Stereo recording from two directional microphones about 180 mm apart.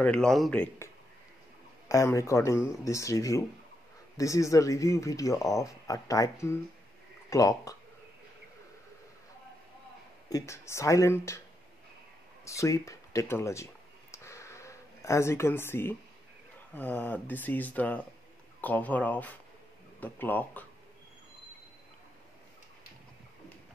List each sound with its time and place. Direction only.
0.0 s speech: 5° left (ahead or behind)
1.9 s speech: 15° left (ahead or behind)
10.3 s speech: 15° left (ahead or behind)
12.4 s speech: 15° left (ahead or behind)
14.1 s a sound: 15° left (ahead or behind)
16.7 s speech: 10° left (ahead or behind)